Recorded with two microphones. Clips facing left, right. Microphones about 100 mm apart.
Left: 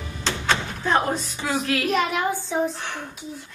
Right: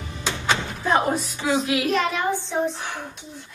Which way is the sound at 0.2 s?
10° right (ahead or behind).